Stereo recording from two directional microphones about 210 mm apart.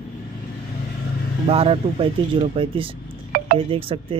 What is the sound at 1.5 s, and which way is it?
Speech, 25° right (ahead or behind).